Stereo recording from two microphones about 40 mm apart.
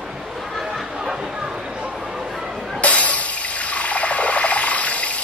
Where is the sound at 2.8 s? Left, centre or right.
Left.